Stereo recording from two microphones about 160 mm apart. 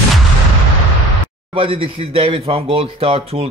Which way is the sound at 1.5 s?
35° right (ahead or behind).